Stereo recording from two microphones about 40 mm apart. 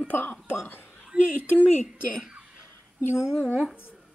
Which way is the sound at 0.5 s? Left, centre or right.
Left.